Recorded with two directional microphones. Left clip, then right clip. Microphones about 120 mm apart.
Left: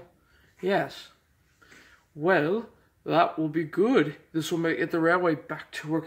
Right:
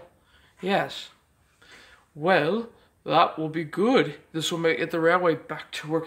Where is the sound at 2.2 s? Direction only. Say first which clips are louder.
Right 2 dB; 20° right (ahead or behind).